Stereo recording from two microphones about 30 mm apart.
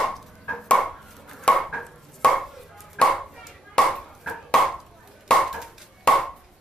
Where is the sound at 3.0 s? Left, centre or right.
Left.